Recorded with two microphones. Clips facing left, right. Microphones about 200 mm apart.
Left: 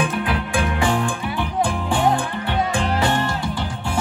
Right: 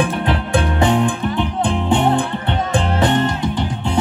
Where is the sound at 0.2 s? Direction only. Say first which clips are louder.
Right 4 dB; 25° right (ahead or behind).